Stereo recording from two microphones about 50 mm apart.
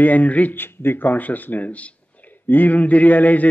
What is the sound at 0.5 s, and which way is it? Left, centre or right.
Speech, left.